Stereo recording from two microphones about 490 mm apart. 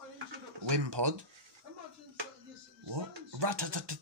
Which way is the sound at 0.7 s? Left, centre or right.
Right.